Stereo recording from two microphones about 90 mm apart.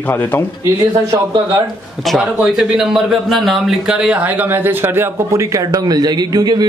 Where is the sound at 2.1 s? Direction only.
5° right (ahead or behind).